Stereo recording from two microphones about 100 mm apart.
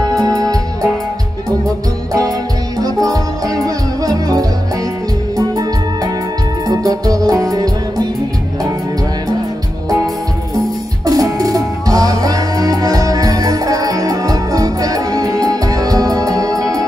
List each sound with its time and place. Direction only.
0.1 s music: 40° right (ahead or behind)
2.8 s music: 35° right (ahead or behind)
6.7 s music: 40° right (ahead or behind)
11.1 s music: 40° right (ahead or behind)